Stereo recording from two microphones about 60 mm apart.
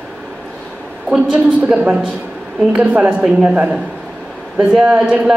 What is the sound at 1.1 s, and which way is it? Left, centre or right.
A woman's voice, right.